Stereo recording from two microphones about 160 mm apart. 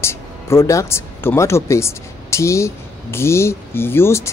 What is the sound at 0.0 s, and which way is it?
Speech, 15° left (ahead or behind).